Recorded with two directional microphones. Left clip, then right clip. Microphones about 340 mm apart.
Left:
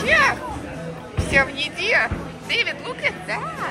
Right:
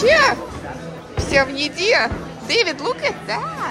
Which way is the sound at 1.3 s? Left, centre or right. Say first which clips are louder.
Right 2 dB; centre.